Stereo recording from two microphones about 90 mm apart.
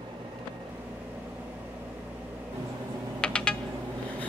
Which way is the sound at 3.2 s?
10° left (ahead or behind).